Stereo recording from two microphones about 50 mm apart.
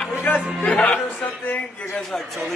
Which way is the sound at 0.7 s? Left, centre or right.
Left.